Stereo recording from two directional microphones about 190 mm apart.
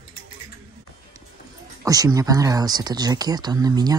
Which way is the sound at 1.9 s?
20° right (ahead or behind).